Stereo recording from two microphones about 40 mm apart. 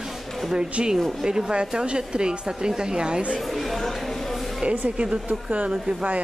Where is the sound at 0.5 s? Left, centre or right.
Right.